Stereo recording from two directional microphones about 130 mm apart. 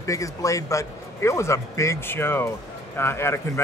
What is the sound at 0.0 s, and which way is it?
Speech, 25° left (ahead or behind).